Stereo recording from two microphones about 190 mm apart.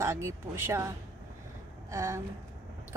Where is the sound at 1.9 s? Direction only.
15° right (ahead or behind).